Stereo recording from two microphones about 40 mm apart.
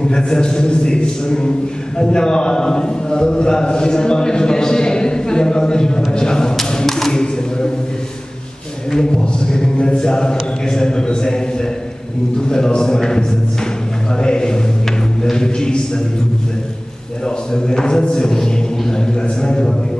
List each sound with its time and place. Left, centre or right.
0.1 s a man's voice: centre
6.7 s a sound: centre
8.9 s a man's voice: left
17.5 s speech: centre